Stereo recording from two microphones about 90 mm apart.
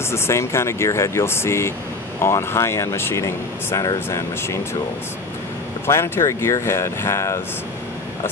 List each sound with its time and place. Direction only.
0.1 s speech: 30° left (ahead or behind)
5.9 s speech: 30° left (ahead or behind)